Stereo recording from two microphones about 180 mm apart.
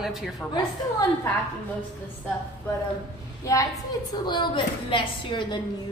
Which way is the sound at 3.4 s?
20° left (ahead or behind).